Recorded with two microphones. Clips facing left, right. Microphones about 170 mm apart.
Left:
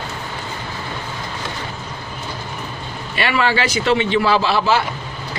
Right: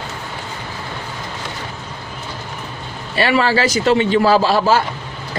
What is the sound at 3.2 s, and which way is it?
A man's voice, 35° right (ahead or behind).